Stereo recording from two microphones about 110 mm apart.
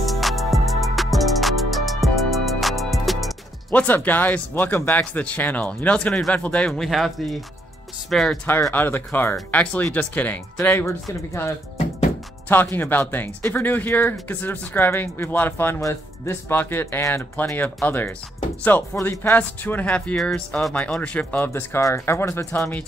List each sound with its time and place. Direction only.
0.0 s music: centre (ahead or behind)
3.7 s speech: 15° left (ahead or behind)
8.5 s speech: 20° left (ahead or behind)
12.7 s speech: 15° left (ahead or behind)
21.5 s speech: 25° left (ahead or behind)